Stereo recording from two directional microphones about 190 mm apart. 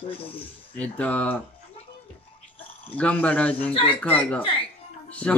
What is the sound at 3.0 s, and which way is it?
Speech, 10° left (ahead or behind).